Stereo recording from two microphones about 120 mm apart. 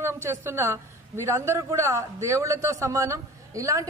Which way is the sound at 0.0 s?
20° right (ahead or behind).